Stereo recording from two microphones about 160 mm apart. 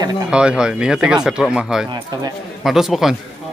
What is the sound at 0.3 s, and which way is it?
Speech, 5° right (ahead or behind).